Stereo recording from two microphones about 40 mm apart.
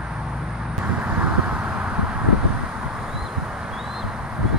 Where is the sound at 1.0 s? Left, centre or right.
Right.